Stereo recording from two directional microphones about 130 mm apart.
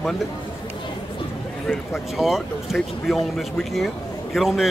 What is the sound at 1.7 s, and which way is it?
A man's voice, centre (ahead or behind).